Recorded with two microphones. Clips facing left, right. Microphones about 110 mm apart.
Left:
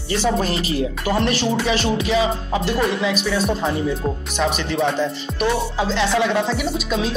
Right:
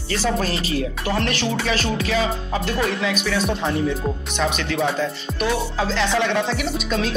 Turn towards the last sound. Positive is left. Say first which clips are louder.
# left 1 dB
turn(degrees=5)  # may be behind; listen again after turning